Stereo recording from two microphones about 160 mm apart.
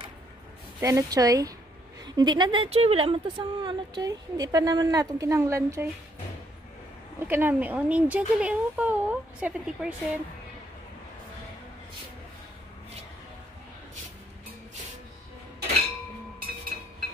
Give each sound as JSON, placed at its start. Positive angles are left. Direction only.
{"t": 0.7, "sound": "a woman's voice", "side_deg": -20}
{"t": 7.2, "sound": "speech", "side_deg": -15}